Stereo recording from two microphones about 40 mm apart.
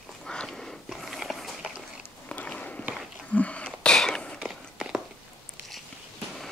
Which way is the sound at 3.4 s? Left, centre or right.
Left.